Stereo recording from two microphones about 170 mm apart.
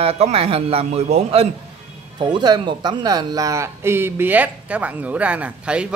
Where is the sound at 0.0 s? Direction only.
35° right (ahead or behind).